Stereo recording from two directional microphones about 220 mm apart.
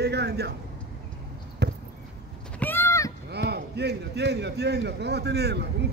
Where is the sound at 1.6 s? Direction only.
50° right (ahead or behind).